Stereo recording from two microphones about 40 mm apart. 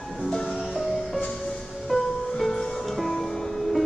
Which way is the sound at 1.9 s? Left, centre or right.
Centre.